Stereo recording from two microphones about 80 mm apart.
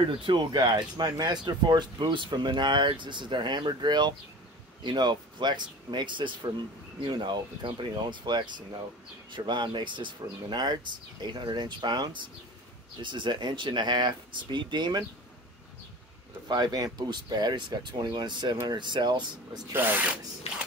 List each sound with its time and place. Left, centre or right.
0.2 s speech: right
7.0 s speech: right
9.3 s speech: right
13.0 s speech: right
16.4 s speech: right